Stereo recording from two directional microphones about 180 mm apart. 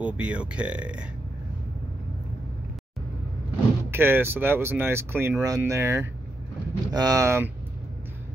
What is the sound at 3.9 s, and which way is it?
Speech, 10° right (ahead or behind).